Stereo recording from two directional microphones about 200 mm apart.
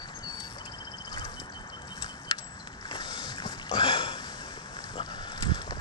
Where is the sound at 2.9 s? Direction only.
20° left (ahead or behind).